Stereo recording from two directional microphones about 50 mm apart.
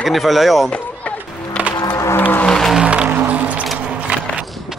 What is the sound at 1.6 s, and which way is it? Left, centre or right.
Music, centre.